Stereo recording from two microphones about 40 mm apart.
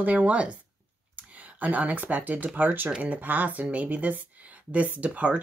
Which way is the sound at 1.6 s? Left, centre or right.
Right.